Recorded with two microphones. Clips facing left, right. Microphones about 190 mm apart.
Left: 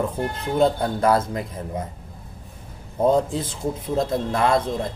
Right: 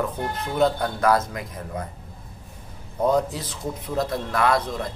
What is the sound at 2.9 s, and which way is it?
A man's voice, 25° left (ahead or behind).